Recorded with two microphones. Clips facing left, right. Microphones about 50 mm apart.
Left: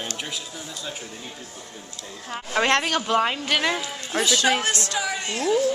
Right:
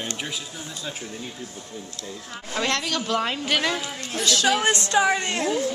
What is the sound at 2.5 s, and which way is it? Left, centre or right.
Speech, left.